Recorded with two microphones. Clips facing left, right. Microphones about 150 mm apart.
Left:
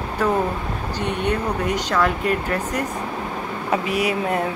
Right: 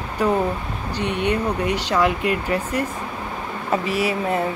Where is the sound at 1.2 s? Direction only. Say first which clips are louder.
Right 2 dB; 60° right (ahead or behind).